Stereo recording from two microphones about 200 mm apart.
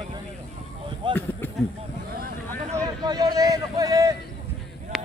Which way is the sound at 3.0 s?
20° right (ahead or behind).